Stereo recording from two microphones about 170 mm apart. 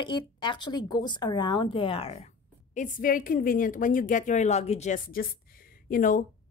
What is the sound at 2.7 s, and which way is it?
A woman's voice, 55° left (ahead or behind).